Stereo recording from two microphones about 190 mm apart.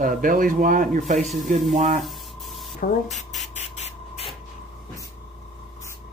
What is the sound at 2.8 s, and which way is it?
Speech, 40° left (ahead or behind).